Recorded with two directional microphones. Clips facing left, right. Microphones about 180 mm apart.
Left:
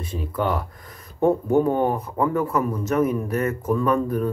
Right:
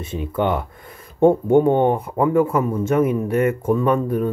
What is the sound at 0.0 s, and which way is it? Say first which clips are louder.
Speech: right 4 dB; 25° right (ahead or behind).